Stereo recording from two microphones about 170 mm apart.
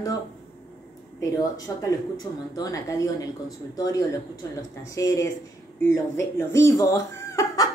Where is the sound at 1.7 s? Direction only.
20° left (ahead or behind).